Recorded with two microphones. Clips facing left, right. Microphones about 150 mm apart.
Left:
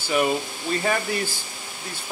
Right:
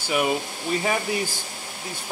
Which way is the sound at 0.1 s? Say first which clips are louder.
Left 1 dB; 10° right (ahead or behind).